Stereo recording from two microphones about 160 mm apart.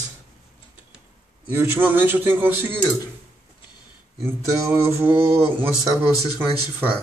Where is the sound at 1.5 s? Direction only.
15° right (ahead or behind).